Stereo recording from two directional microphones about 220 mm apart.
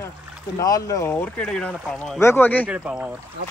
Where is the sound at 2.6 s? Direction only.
5° right (ahead or behind).